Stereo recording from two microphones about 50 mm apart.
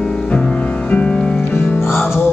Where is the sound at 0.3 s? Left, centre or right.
Left.